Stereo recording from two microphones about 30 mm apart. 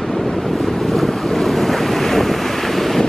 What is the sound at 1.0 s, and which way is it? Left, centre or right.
Waves, centre.